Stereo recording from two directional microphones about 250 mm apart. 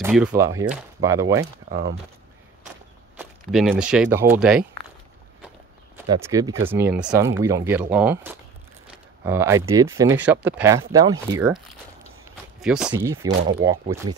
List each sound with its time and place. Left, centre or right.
0.0 s speech: centre
1.4 s speech: right
3.2 s speech: centre
6.2 s speech: centre